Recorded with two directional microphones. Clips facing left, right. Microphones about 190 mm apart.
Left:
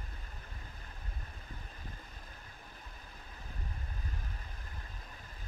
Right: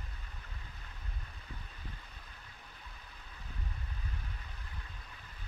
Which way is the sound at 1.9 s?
40° left (ahead or behind).